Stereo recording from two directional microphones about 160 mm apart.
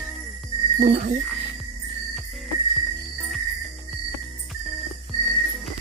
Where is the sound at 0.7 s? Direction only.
55° right (ahead or behind).